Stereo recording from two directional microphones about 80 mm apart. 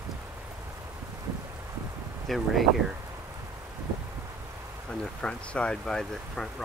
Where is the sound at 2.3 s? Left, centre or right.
Centre.